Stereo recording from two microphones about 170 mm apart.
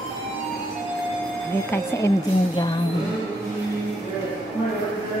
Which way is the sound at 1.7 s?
20° left (ahead or behind).